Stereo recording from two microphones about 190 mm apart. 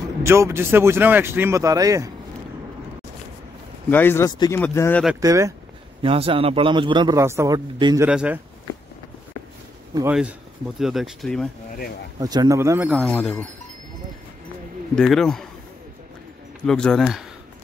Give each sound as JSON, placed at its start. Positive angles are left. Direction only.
{"t": 0.2, "sound": "a man's voice", "side_deg": -15}
{"t": 3.9, "sound": "speech", "side_deg": 10}
{"t": 5.2, "sound": "a man's voice", "side_deg": -15}
{"t": 6.0, "sound": "a man's voice", "side_deg": -30}
{"t": 8.1, "sound": "speech", "side_deg": -5}
{"t": 10.0, "sound": "a man's voice", "side_deg": -5}
{"t": 12.2, "sound": "a man's voice", "side_deg": -20}
{"t": 13.0, "sound": "speech", "side_deg": 5}
{"t": 15.0, "sound": "speech", "side_deg": 0}
{"t": 16.6, "sound": "speech", "side_deg": 5}